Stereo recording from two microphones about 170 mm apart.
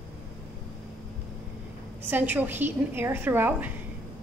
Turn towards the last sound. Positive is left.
turn(degrees=-10)  # may be behind; listen again after turning